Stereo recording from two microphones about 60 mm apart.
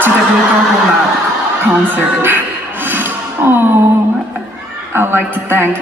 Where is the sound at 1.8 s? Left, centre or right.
Right.